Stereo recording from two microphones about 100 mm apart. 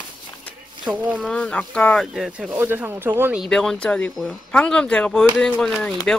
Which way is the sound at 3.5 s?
5° left (ahead or behind).